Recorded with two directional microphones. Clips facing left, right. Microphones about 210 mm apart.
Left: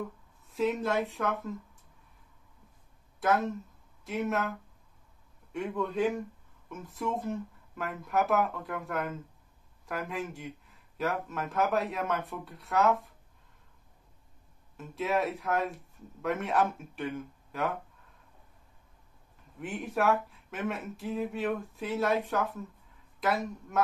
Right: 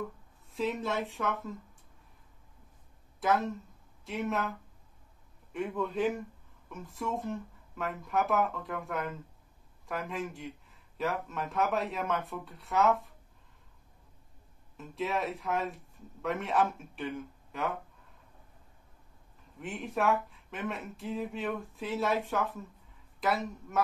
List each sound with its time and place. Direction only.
0.6 s speech: centre (ahead or behind)
3.2 s speech: centre (ahead or behind)
5.5 s speech: centre (ahead or behind)
14.8 s speech: centre (ahead or behind)
19.6 s speech: centre (ahead or behind)